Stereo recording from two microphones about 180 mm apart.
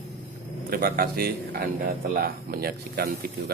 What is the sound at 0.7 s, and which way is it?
A man's voice, 55° right (ahead or behind).